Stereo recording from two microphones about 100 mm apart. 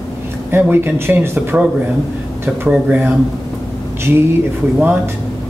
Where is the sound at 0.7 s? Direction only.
20° right (ahead or behind).